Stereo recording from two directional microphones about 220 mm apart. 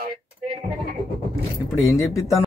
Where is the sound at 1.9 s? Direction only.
15° left (ahead or behind).